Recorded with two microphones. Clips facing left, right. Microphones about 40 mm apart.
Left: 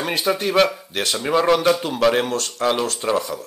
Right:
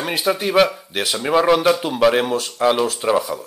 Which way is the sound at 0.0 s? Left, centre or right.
Centre.